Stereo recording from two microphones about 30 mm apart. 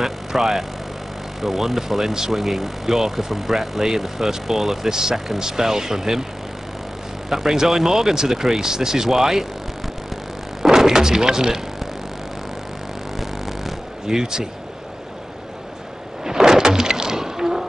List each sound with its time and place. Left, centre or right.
0.0 s speech: centre
7.2 s speech: centre
10.7 s speech: centre
13.1 s a sound: centre
14.0 s speech: centre
16.3 s insect: centre